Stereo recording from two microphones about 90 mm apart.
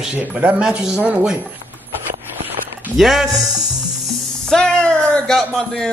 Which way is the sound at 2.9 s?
5° right (ahead or behind).